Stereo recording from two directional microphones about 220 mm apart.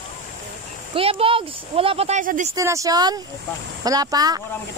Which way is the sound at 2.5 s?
15° right (ahead or behind).